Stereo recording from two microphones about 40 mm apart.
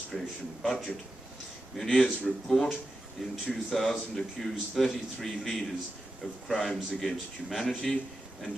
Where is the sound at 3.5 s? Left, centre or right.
Centre.